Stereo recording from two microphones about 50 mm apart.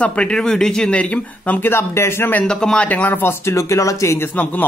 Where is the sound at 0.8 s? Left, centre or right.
Left.